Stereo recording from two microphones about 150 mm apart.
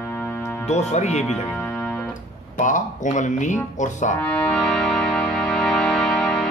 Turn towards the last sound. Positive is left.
turn(degrees=5)  # may be behind; listen again after turning